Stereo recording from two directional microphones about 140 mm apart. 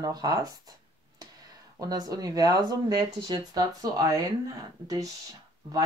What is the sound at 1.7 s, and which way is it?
Speech, 30° right (ahead or behind).